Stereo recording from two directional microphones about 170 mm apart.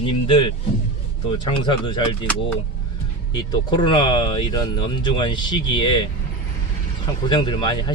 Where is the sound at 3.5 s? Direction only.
25° left (ahead or behind).